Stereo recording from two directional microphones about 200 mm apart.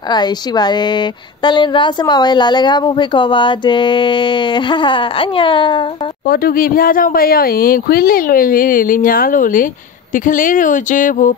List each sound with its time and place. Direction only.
0.1 s a woman's voice: 20° left (ahead or behind)
6.2 s speech: 50° left (ahead or behind)